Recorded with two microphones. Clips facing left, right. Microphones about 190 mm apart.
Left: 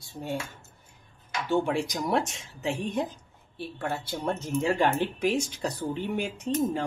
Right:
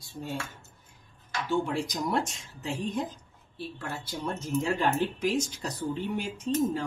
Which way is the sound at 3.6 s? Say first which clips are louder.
Left 4 dB; 60° left (ahead or behind).